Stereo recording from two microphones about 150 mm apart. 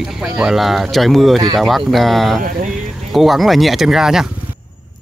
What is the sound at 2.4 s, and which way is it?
Speech, 65° right (ahead or behind).